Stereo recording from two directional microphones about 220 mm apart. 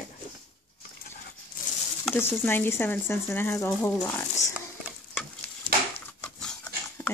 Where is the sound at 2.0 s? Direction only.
10° left (ahead or behind).